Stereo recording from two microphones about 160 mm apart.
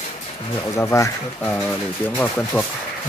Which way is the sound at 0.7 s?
20° left (ahead or behind).